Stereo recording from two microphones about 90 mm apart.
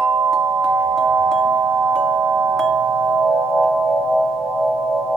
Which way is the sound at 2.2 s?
30° right (ahead or behind).